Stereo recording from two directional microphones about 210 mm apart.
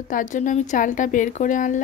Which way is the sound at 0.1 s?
35° left (ahead or behind).